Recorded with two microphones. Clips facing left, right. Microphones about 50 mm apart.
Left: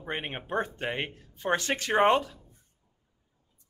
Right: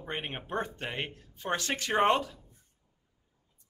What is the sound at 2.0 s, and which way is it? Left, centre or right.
Speech, centre.